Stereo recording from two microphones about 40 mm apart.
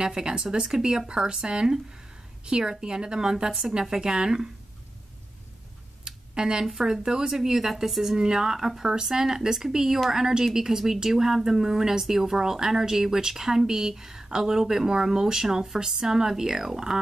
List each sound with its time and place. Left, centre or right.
0.0 s a woman's voice: right
6.0 s a sound: centre
6.6 s a woman's voice: centre